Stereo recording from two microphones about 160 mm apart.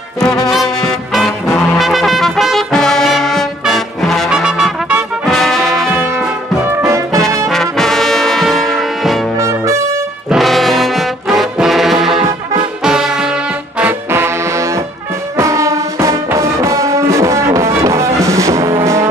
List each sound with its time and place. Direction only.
0.2 s music: centre (ahead or behind)
6.8 s brass instrument: 20° right (ahead or behind)
7.4 s brass instrument: centre (ahead or behind)
9.4 s trumpet: 15° right (ahead or behind)
10.3 s trombone: centre (ahead or behind)
12.8 s music: 5° right (ahead or behind)
13.7 s trombone: 15° right (ahead or behind)
15.3 s music: 20° right (ahead or behind)